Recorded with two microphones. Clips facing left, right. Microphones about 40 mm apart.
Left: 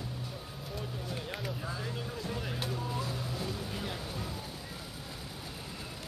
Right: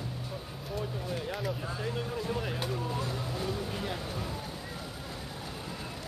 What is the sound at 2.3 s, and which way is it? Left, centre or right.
Vehicle, centre.